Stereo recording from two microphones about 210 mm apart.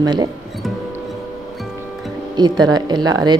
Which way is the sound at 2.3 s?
20° right (ahead or behind).